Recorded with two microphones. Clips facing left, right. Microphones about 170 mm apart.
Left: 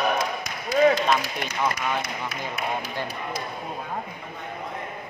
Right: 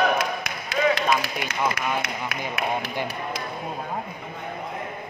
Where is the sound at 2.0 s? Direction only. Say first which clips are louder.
Right 1 dB; 65° right (ahead or behind).